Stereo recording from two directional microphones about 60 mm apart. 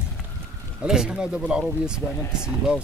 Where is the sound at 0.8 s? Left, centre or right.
Centre.